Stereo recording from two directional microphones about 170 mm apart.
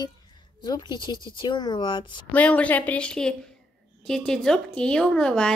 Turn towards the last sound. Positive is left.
turn(degrees=5)  # may be behind; listen again after turning